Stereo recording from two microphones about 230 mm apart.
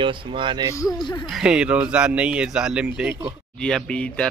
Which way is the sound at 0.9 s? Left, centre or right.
Centre.